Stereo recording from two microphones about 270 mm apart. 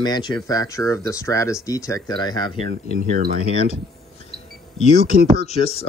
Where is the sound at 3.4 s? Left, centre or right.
Left.